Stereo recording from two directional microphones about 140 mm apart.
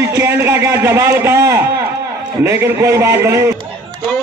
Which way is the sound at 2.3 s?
20° right (ahead or behind).